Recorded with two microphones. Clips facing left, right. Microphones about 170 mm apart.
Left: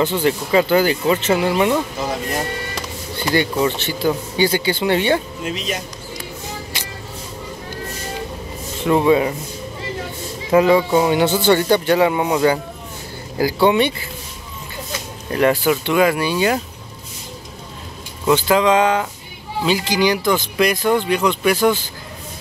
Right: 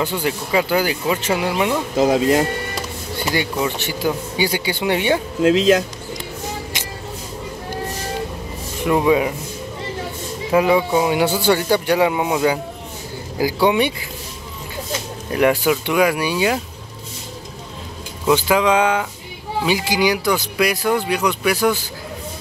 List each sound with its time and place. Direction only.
0.0 s speech: 10° right (ahead or behind)
2.0 s speech: 90° right
3.2 s speech: 10° right (ahead or behind)
5.4 s speech: 90° right
6.7 s vehicle: 20° right (ahead or behind)
8.8 s speech: 10° right (ahead or behind)
10.5 s speech: 10° right (ahead or behind)
15.3 s speech: 15° right (ahead or behind)
18.3 s speech: 10° right (ahead or behind)